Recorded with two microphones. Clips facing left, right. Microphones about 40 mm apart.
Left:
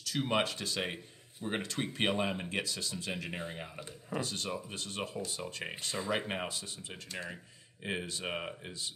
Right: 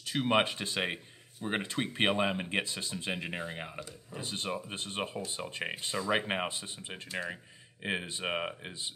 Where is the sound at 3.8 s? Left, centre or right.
Left.